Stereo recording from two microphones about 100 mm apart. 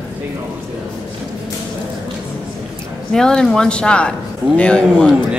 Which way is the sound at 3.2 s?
5° left (ahead or behind).